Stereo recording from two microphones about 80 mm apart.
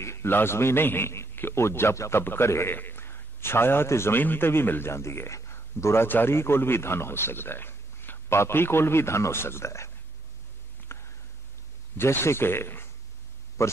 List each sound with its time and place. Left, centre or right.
0.0 s a man's voice: left
10.9 s a sound: left
12.0 s a man's voice: left